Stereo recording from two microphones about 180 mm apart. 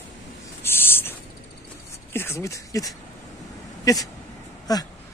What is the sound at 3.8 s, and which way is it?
Speech, 20° left (ahead or behind).